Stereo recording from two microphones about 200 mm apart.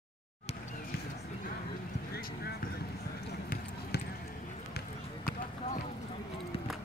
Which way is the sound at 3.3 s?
55° left (ahead or behind).